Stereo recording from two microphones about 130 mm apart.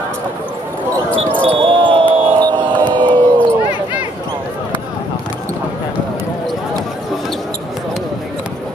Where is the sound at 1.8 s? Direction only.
40° right (ahead or behind).